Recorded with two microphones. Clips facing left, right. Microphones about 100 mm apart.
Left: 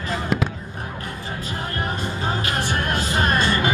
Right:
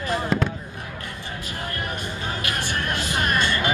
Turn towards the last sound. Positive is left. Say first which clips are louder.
# left 3 dB
turn(degrees=35)  # may be behind; listen again after turning